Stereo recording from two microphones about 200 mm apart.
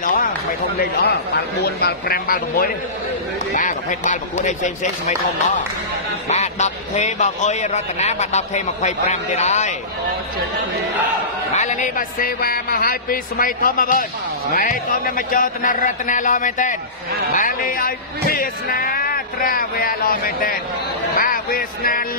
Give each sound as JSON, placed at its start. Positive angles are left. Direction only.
{"t": 0.0, "sound": "a sound", "side_deg": 40}
{"t": 0.7, "sound": "speech", "side_deg": 50}
{"t": 6.2, "sound": "speech", "side_deg": 35}
{"t": 11.5, "sound": "speech", "side_deg": 35}